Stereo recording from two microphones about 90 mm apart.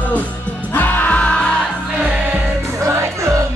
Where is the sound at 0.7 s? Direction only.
20° left (ahead or behind).